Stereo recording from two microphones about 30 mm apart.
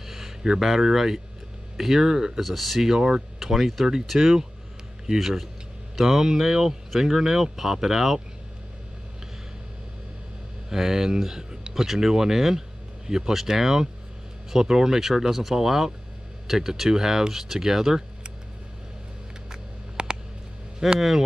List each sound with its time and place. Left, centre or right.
0.0 s a sound: centre
0.4 s speech: right
0.7 s speech: centre
2.4 s speech: centre
2.8 s speech: centre
3.3 s speech: centre
10.7 s speech: centre
19.5 s a sound: right
20.8 s speech: centre